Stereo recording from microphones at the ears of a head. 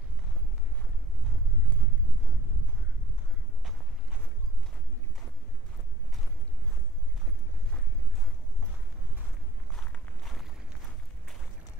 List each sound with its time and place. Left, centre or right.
1.2 s clip-clop: right